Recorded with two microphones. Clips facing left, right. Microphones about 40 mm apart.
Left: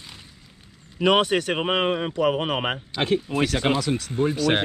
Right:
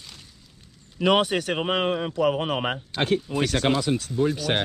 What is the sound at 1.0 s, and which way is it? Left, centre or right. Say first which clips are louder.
Speech: left 1 dB; centre.